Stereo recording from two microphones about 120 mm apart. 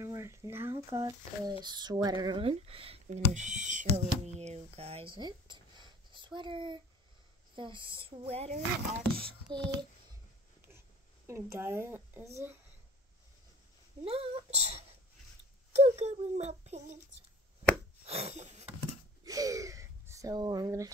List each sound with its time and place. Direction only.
0.0 s speech: 25° right (ahead or behind)
1.6 s a sound: 35° right (ahead or behind)
2.4 s speech: 50° right (ahead or behind)
3.1 s speech: 85° right; by 8.5 s 60° right (ahead or behind)
9.1 s a sound: 45° right (ahead or behind)
11.2 s speech: 20° right (ahead or behind)
14.0 s a child's voice: 55° right (ahead or behind)
18.0 s a sound: 60° right (ahead or behind)
19.2 s speech: 30° right (ahead or behind)